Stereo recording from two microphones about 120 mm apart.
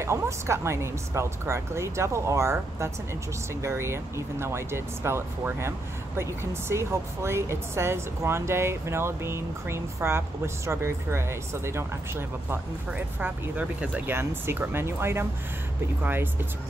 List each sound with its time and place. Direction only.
0.0 s speech: 25° right (ahead or behind)